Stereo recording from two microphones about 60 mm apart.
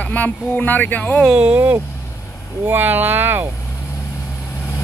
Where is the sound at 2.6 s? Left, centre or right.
Right.